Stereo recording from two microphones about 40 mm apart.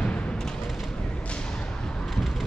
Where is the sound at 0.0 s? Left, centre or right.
Left.